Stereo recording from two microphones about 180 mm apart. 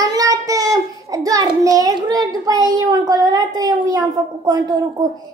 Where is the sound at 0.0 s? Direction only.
20° right (ahead or behind).